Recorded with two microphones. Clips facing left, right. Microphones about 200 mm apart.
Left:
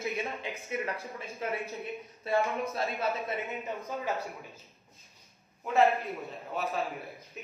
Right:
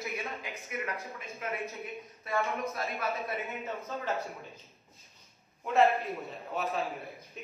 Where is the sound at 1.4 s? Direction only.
30° left (ahead or behind).